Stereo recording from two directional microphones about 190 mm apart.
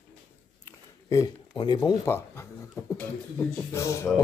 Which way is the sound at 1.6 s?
20° left (ahead or behind).